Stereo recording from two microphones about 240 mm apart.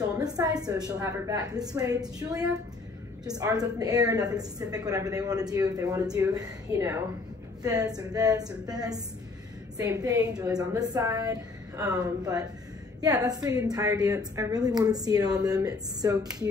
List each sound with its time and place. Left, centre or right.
0.2 s a woman's voice: centre